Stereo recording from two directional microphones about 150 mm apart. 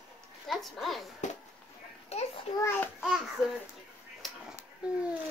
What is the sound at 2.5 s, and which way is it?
Child singing, 45° left (ahead or behind).